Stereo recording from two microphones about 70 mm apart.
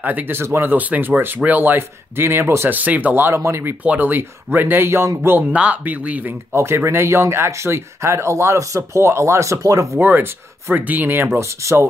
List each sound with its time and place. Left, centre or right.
0.0 s speech: right
0.7 s speech: right
2.8 s speech: right
3.3 s speech: right
3.8 s speech: right
5.5 s speech: right
6.5 s speech: right
9.9 s speech: right
11.3 s speech: right